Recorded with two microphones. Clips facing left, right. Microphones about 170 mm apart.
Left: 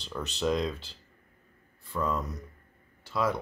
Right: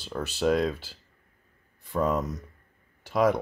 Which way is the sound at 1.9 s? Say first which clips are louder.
Right 5 dB; 20° right (ahead or behind).